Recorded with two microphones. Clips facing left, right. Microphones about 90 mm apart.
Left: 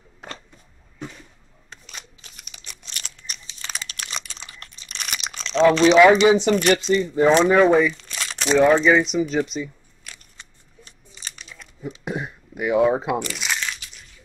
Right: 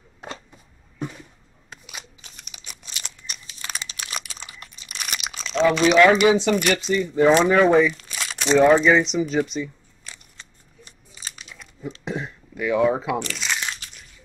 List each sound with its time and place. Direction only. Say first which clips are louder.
1.7 s shuffling cards: right 1 dB; 5° right (ahead or behind)
2.5 s crumpling: even; 5° right (ahead or behind)
6.2 s speech: left 2 dB; 20° left (ahead or behind)
7.4 s speech: left 1 dB; 5° left (ahead or behind)
10.8 s crumpling: even; 5° right (ahead or behind)
11.9 s a sound: left 1 dB; 10° left (ahead or behind)
13.2 s speech: left 1 dB; 5° left (ahead or behind)